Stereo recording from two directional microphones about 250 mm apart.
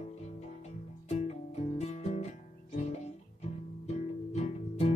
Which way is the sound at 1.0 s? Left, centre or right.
Left.